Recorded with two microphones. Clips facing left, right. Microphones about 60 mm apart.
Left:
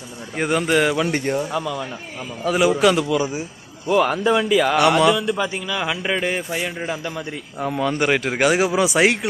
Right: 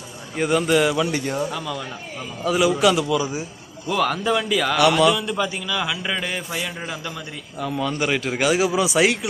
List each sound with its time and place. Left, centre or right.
0.4 s speech: left
1.0 s speech: left
1.5 s speech: centre
2.4 s speech: left
3.8 s speech: centre
4.7 s speech: left
5.1 s a man's voice: centre
7.6 s speech: left